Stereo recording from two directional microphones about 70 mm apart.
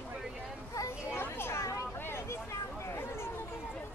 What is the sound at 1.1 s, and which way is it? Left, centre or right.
Children playing, left.